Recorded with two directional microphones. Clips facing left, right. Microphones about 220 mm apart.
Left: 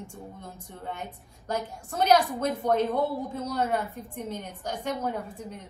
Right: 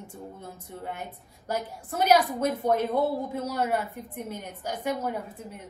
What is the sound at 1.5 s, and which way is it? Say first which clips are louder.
A woman's voice: even; 10° right (ahead or behind).